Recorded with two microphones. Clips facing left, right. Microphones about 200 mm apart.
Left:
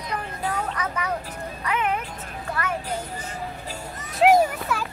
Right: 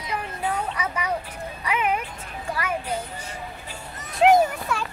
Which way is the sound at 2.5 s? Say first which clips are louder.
Right 1 dB; 10° right (ahead or behind).